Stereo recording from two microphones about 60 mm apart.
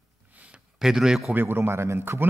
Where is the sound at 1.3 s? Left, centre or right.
Right.